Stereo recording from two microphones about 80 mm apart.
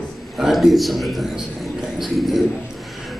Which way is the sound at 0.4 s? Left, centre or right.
Centre.